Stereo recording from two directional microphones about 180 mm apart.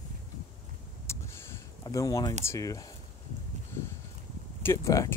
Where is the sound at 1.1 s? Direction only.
15° left (ahead or behind).